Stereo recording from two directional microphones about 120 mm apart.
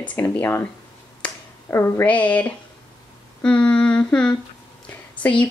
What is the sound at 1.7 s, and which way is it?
Speech, 25° left (ahead or behind).